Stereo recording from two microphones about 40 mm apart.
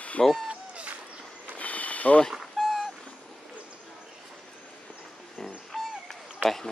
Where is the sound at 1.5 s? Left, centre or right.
Left.